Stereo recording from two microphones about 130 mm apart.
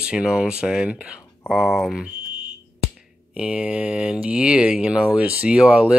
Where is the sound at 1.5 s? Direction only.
Centre (ahead or behind).